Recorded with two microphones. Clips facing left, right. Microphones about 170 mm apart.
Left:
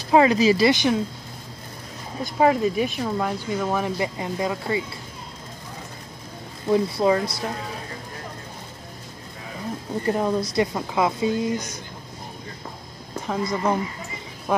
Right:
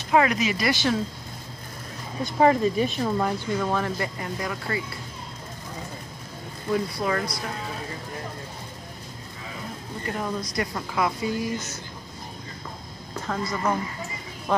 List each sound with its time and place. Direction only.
0.1 s a woman's voice: 25° left (ahead or behind)
0.7 s speech: 20° left (ahead or behind)
2.2 s speech: 5° left (ahead or behind); by 4.8 s 20° left (ahead or behind)
6.7 s a woman's voice: 25° left (ahead or behind)
10.0 s a woman's voice: 30° left (ahead or behind)
13.3 s a woman's voice: 20° left (ahead or behind)